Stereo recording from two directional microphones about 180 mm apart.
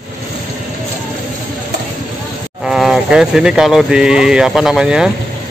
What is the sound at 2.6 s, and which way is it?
Speech, centre (ahead or behind).